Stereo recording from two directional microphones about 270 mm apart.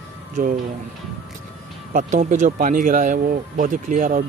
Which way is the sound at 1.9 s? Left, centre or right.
Right.